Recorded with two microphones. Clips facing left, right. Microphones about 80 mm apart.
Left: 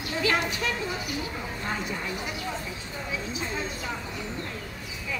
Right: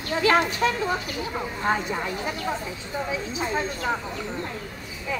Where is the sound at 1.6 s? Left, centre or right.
Right.